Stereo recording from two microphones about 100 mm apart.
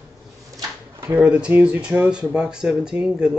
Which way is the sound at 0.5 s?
30° right (ahead or behind).